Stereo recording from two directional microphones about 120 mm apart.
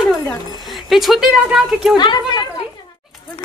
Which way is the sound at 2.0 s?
40° left (ahead or behind).